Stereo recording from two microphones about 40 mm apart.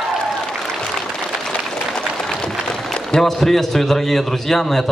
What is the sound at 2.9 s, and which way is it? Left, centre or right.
A woman's voice, centre.